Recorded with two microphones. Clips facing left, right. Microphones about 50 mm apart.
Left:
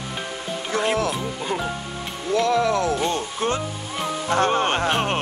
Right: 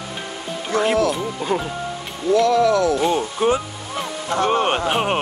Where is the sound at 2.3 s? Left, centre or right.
Left.